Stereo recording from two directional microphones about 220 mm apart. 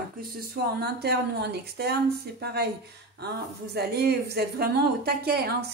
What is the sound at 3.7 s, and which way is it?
A woman's voice, 45° right (ahead or behind).